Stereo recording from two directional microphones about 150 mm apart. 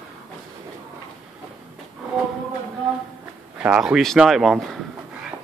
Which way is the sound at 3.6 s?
5° right (ahead or behind).